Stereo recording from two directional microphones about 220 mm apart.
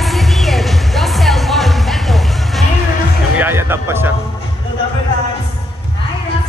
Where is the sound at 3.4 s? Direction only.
10° right (ahead or behind).